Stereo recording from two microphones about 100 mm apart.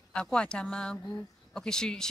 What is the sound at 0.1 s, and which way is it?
Speech, 10° left (ahead or behind).